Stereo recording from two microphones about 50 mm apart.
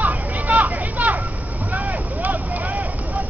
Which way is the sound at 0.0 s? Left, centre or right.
Right.